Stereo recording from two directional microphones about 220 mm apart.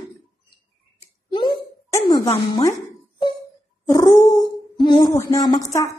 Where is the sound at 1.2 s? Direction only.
20° left (ahead or behind).